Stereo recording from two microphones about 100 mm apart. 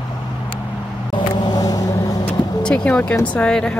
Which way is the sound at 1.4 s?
40° left (ahead or behind).